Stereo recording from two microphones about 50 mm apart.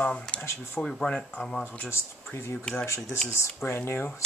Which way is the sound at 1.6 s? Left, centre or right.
Left.